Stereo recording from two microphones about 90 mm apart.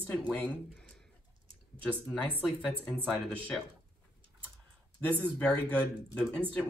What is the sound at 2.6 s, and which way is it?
Speech, 15° left (ahead or behind).